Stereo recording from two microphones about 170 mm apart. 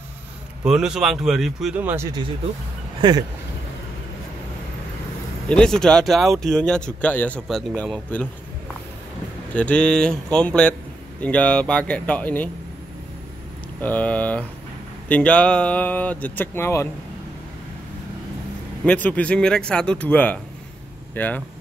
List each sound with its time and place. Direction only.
0.7 s speech: 5° right (ahead or behind)
3.0 s speech: 25° right (ahead or behind)
5.5 s speech: 5° left (ahead or behind)
9.5 s speech: 10° left (ahead or behind)
13.7 s speech: 10° left (ahead or behind)
18.9 s speech: 10° left (ahead or behind)